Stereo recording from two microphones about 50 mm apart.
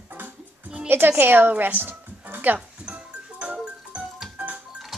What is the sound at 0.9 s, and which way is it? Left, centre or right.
Speech, right.